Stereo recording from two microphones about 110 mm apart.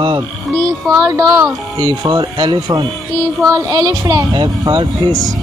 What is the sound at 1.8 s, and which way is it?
Speech, 40° right (ahead or behind).